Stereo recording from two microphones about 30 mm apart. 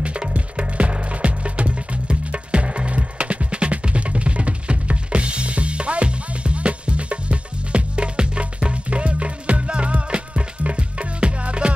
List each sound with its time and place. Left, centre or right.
0.0 s music: right